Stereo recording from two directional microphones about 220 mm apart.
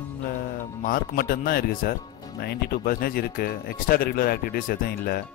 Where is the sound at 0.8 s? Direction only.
40° left (ahead or behind).